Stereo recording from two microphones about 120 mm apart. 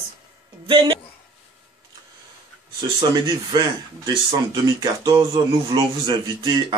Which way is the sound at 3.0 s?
35° right (ahead or behind).